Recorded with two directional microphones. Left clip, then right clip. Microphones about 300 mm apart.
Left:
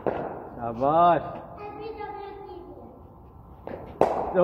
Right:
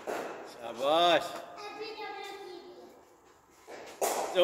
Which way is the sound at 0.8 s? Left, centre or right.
Right.